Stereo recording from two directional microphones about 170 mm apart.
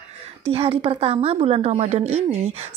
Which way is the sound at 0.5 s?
35° right (ahead or behind).